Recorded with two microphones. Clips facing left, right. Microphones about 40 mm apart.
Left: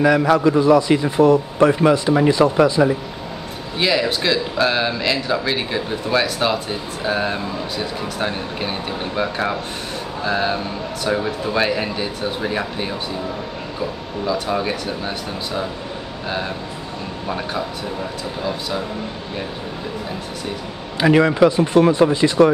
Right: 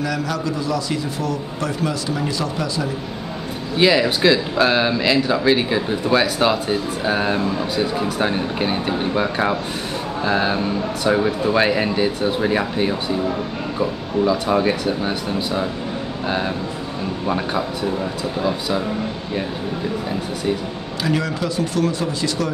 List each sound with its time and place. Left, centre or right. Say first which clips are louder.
0.0 s a man's voice: left 9 dB; left
3.7 s speech: right 3 dB; centre
21.0 s a man's voice: left 9 dB; left